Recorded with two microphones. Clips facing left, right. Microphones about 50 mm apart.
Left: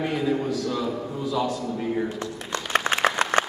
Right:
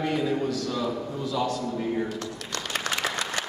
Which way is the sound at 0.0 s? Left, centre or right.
Centre.